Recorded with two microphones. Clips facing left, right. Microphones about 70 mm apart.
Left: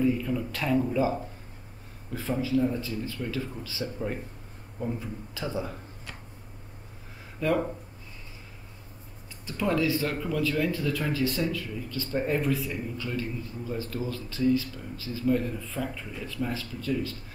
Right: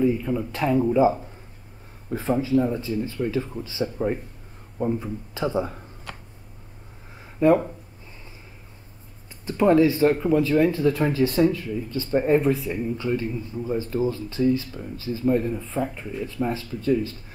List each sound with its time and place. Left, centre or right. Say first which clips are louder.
0.0 s speech: right 4 dB; right
2.1 s speech: right 5 dB; right
7.3 s speech: right 8 dB; right
9.5 s speech: right 9 dB; right